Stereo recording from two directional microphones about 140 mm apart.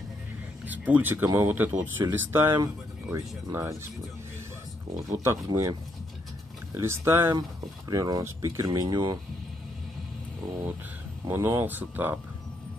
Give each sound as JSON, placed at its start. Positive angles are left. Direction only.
{"t": 0.7, "sound": "speech", "side_deg": -10}
{"t": 4.9, "sound": "speech", "side_deg": -25}
{"t": 11.2, "sound": "speech", "side_deg": -20}